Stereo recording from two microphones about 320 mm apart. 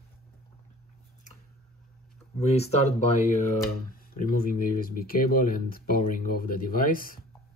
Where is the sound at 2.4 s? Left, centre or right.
Centre.